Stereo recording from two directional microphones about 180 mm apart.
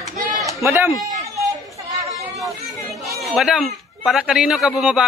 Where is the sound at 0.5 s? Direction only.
15° right (ahead or behind).